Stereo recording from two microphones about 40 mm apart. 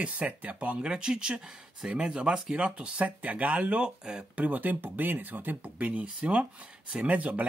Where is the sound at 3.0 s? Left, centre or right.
Right.